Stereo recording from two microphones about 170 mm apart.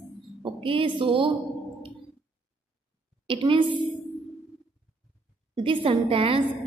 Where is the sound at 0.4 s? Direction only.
30° right (ahead or behind).